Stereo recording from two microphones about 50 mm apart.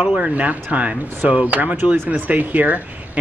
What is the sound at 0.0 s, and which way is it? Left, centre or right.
Speech, right.